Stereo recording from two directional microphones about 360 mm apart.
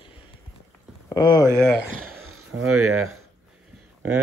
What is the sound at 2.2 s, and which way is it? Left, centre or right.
Speech, right.